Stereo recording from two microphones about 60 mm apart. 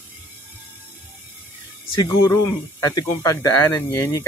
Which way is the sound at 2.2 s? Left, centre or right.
Left.